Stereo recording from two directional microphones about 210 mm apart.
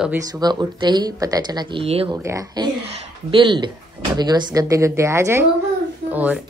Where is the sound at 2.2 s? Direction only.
15° right (ahead or behind).